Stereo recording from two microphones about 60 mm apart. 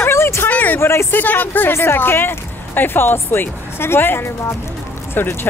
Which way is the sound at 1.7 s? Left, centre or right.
Left.